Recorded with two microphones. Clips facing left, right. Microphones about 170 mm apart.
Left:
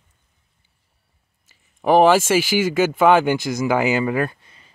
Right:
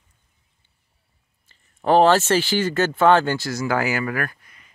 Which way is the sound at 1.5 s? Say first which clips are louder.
Left 2 dB; 10° left (ahead or behind).